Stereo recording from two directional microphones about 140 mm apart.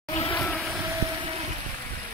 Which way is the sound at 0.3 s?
15° left (ahead or behind).